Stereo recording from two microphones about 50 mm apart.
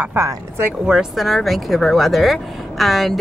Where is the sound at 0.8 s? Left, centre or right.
Centre.